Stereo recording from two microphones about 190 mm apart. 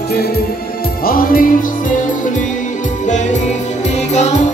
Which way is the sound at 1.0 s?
50° left (ahead or behind).